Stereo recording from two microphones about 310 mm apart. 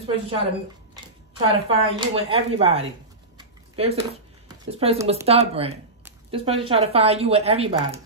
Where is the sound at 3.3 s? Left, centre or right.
Centre.